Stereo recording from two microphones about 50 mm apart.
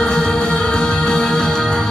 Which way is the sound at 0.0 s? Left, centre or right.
Centre.